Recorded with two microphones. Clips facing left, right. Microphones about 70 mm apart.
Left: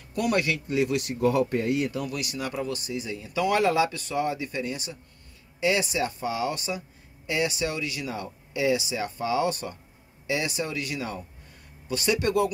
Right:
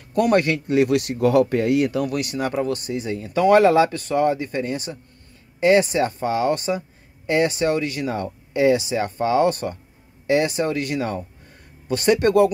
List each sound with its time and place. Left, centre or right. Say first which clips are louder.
0.1 s speech: right 7 dB; right
0.7 s speech: right 7 dB; right